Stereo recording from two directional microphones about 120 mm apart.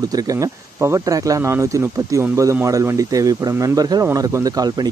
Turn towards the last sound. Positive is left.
turn(degrees=-35)  # may be behind; listen again after turning